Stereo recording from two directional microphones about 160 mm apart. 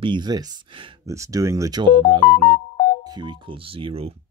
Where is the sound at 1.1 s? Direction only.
20° right (ahead or behind).